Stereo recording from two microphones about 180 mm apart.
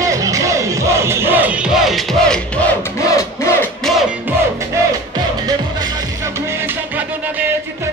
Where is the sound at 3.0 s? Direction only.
15° left (ahead or behind).